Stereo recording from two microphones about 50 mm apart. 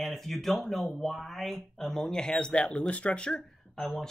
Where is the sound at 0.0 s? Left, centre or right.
Centre.